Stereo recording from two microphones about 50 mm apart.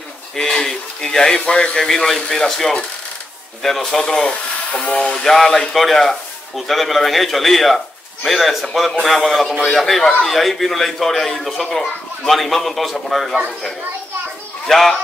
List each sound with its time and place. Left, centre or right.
0.4 s speech: centre
1.9 s a man's voice: centre
5.2 s a man's voice: centre
14.7 s speech: centre